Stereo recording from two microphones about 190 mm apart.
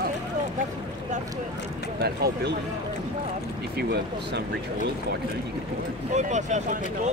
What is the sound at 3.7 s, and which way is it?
Speech, 60° right (ahead or behind).